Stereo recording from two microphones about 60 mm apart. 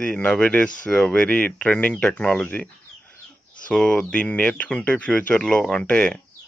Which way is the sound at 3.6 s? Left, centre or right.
Centre.